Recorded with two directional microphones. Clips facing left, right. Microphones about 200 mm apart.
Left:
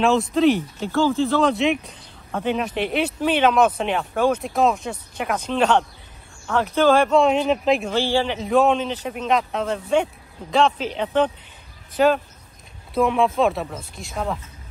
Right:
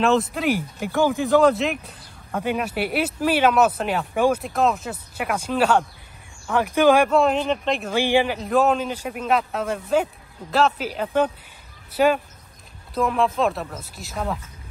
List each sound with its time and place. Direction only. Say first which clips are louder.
0.7 s speech: left 1 dB; 15° right (ahead or behind)
1.5 s speech: left 3 dB; centre (ahead or behind)
7.2 s speech: left 2 dB; centre (ahead or behind)
7.9 s speech: right 1 dB; 15° right (ahead or behind)
8.4 s speech: left 2 dB; centre (ahead or behind)